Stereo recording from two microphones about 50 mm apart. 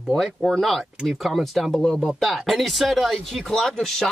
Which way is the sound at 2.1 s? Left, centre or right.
Centre.